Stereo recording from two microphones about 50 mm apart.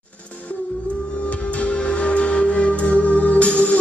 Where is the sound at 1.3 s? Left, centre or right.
Left.